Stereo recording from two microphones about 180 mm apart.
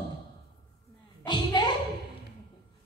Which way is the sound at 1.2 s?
25° left (ahead or behind).